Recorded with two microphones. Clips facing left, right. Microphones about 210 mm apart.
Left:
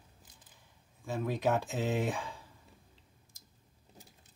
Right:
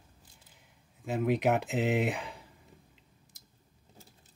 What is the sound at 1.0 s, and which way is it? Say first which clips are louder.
Speech: right 4 dB; 20° right (ahead or behind).